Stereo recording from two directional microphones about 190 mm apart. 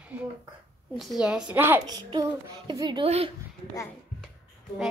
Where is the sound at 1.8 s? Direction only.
20° right (ahead or behind).